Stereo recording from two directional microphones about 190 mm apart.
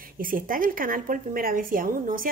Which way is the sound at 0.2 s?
45° right (ahead or behind).